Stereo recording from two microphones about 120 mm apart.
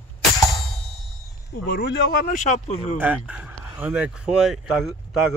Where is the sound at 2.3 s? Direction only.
80° left.